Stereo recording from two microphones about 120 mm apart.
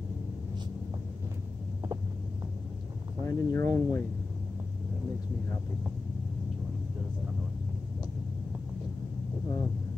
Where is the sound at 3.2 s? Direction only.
25° left (ahead or behind).